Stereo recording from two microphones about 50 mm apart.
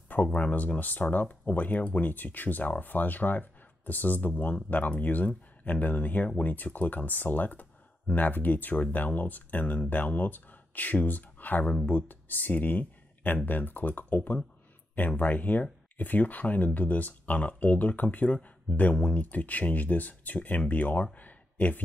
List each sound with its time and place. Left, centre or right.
0.1 s speech: left